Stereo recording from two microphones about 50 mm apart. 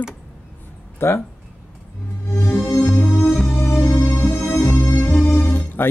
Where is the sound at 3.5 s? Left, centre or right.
Left.